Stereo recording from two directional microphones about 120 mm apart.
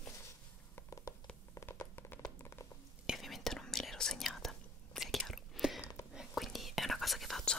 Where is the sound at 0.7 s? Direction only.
25° left (ahead or behind).